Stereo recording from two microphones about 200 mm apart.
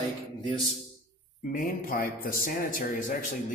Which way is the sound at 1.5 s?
45° left (ahead or behind).